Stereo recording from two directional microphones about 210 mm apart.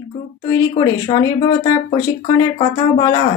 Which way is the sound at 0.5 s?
20° left (ahead or behind).